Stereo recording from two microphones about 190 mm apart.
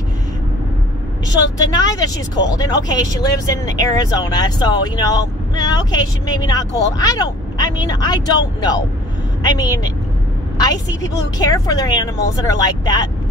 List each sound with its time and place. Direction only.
1.6 s speech: 20° left (ahead or behind)
11.3 s speech: 20° left (ahead or behind)